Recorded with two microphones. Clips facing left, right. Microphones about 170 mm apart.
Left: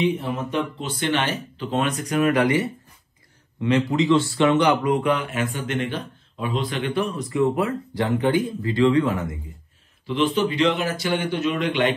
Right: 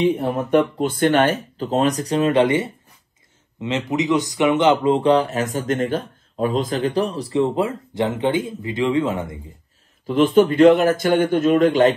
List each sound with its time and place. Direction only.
0.0 s speech: 45° right (ahead or behind); by 9.4 s 25° right (ahead or behind)
10.0 s speech: 45° right (ahead or behind)